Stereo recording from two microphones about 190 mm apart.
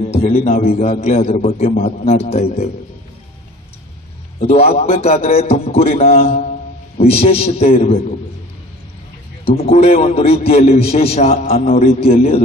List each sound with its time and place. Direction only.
0.0 s a man's voice: 35° left (ahead or behind)
4.4 s a man's voice: 35° left (ahead or behind)
9.4 s a man's voice: 30° left (ahead or behind)